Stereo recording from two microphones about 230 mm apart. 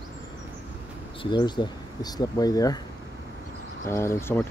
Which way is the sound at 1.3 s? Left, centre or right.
Centre.